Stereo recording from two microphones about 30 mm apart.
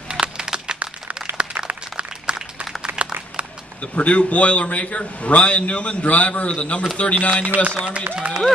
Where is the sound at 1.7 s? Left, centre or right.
Right.